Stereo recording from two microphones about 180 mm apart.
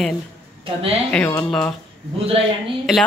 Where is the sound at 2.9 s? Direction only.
5° right (ahead or behind).